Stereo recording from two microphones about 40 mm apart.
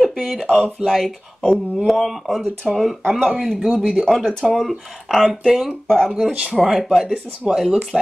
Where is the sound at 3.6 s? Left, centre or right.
Right.